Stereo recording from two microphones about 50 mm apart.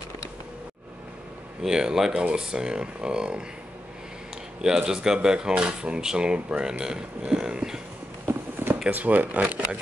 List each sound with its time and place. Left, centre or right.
1.6 s speech: centre
4.6 s speech: centre
8.6 s a sound: right
8.9 s speech: right